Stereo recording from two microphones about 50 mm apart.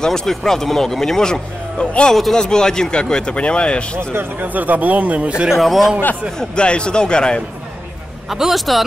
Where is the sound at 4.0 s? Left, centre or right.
Right.